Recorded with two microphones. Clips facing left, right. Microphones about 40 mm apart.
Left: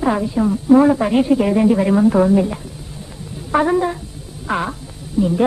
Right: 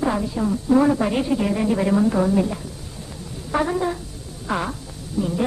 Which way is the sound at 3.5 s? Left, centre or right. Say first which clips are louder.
Left 6 dB; centre.